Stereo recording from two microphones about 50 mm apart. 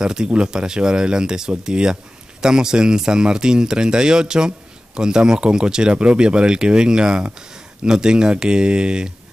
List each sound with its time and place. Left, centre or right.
0.0 s speech: centre